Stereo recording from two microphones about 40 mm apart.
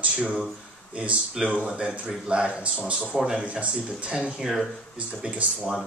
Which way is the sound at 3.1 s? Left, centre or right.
Centre.